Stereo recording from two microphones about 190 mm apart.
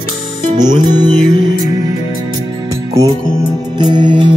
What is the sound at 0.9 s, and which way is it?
Music, 20° right (ahead or behind).